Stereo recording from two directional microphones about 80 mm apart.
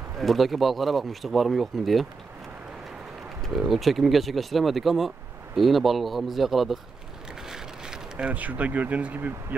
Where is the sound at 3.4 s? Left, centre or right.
Centre; by 9.6 s right.